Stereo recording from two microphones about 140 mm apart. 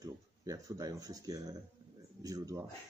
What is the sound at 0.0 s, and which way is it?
Speech, 25° right (ahead or behind).